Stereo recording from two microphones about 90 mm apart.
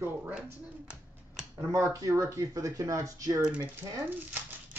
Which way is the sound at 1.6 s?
30° right (ahead or behind).